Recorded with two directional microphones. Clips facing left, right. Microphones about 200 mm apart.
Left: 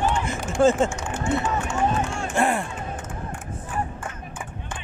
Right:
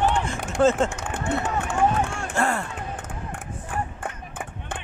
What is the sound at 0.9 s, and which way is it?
Run, 60° right (ahead or behind).